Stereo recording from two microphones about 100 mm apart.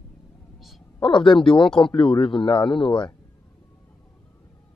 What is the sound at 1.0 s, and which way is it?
Speech, 55° left (ahead or behind).